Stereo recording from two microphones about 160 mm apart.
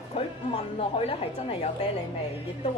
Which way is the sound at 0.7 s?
35° left (ahead or behind).